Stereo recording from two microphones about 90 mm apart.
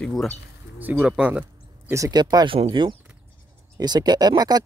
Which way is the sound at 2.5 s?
65° right (ahead or behind).